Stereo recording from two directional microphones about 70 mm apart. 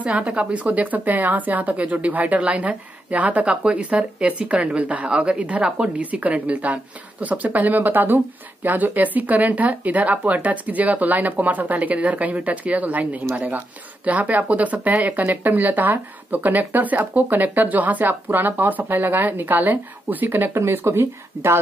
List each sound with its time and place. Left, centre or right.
0.0 s a woman's voice: centre; by 21.5 s right